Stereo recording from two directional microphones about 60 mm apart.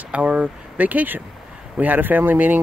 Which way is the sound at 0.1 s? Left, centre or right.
Right.